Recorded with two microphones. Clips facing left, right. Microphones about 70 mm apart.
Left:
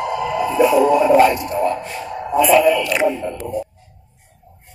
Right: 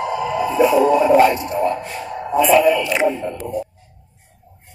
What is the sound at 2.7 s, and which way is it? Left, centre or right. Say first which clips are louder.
Music: even; centre.